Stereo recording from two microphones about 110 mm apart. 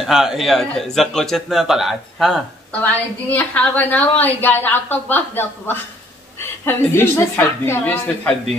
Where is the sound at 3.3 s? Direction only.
15° left (ahead or behind).